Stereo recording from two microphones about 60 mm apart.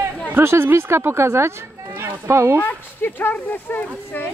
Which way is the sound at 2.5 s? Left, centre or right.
Left.